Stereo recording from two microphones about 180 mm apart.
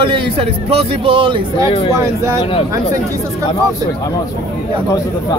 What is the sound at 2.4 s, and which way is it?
Speech, 30° left (ahead or behind).